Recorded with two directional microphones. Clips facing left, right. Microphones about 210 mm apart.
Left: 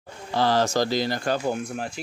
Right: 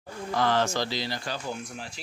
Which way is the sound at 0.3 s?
35° left (ahead or behind).